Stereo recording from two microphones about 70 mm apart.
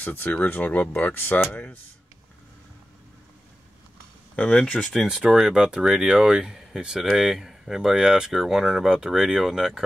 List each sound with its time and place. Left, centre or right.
0.0 s speech: left
4.4 s speech: centre
4.9 s speech: centre